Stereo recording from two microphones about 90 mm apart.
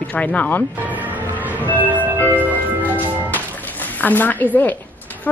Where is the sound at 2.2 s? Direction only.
20° right (ahead or behind).